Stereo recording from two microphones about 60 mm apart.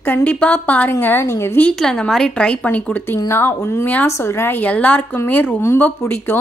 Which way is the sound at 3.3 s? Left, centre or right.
Left.